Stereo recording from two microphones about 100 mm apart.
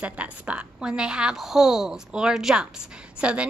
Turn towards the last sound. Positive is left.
turn(degrees=-10)  # may be behind; listen again after turning